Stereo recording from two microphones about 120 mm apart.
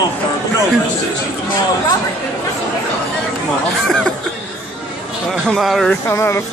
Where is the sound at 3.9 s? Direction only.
5° left (ahead or behind).